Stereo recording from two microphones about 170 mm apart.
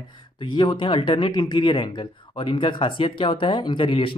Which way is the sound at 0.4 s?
25° left (ahead or behind).